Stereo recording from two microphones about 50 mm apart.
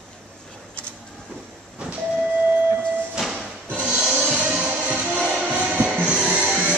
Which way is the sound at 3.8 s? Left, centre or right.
Centre.